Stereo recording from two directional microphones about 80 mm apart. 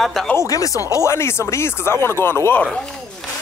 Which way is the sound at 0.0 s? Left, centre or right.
Centre.